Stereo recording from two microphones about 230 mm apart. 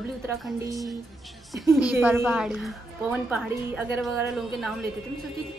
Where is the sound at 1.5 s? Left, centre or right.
Centre.